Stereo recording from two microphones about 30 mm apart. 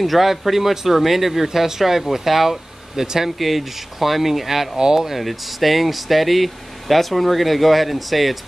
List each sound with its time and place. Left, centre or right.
0.0 s speech: centre
4.7 s speech: right
5.1 s speech: centre